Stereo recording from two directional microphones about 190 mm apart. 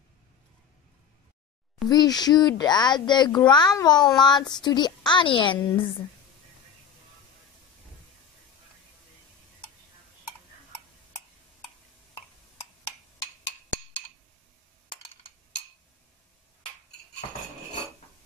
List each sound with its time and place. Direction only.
1.9 s speech: 20° left (ahead or behind)